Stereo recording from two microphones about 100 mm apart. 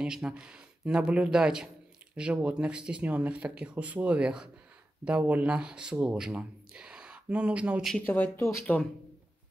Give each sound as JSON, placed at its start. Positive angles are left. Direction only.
{"t": 0.0, "sound": "speech", "side_deg": -5}
{"t": 8.0, "sound": "speech", "side_deg": 20}